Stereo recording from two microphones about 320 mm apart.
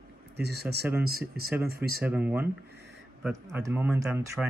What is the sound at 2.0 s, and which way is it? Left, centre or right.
Speech, centre.